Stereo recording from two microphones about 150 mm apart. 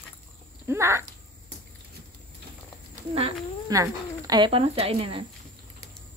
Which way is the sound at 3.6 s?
25° right (ahead or behind).